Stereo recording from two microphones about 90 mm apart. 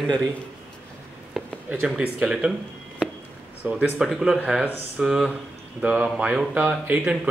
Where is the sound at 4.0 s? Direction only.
5° right (ahead or behind).